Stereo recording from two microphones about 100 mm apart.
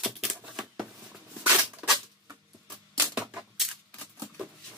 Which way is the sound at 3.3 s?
10° right (ahead or behind).